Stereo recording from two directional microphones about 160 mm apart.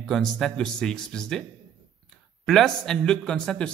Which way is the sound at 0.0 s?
Centre (ahead or behind).